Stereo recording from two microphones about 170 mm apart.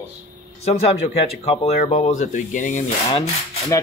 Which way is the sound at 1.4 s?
35° left (ahead or behind).